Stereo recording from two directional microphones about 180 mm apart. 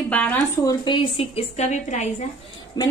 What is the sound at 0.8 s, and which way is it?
A woman's voice, 25° left (ahead or behind).